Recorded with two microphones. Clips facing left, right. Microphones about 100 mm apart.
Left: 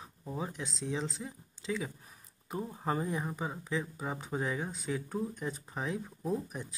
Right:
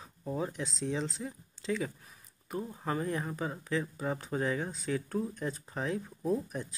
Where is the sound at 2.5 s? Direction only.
25° left (ahead or behind).